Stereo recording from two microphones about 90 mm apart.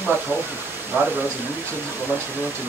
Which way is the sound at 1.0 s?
20° right (ahead or behind).